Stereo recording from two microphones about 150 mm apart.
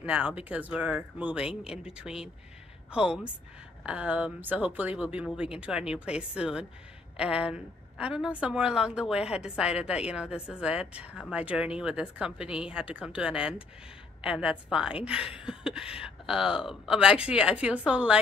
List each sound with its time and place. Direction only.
0.0 s a woman's voice: 10° right (ahead or behind)